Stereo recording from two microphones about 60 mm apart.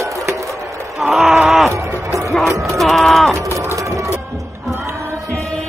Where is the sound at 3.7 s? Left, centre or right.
Right.